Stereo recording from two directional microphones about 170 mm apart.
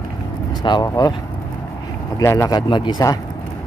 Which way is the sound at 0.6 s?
25° left (ahead or behind).